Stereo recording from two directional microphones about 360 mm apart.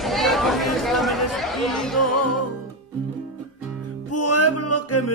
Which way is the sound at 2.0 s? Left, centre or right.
Left.